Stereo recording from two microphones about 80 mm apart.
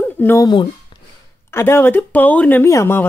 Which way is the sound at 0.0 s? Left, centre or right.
Left.